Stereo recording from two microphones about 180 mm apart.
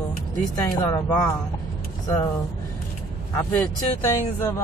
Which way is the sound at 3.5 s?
15° left (ahead or behind).